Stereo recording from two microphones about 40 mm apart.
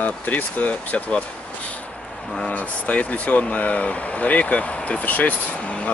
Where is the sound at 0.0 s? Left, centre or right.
Left.